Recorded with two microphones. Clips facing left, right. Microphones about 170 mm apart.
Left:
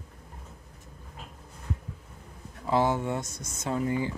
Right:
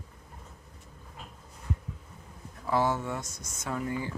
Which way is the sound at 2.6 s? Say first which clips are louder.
Left 2 dB; 20° left (ahead or behind).